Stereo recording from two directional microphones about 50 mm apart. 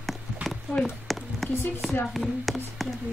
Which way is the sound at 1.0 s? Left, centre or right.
Centre.